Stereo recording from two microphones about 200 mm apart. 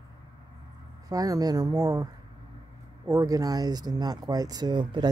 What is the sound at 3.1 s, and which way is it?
Speech, 15° right (ahead or behind).